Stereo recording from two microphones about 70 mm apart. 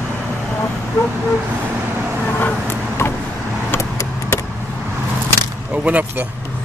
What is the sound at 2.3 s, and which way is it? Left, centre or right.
Vehicle, left.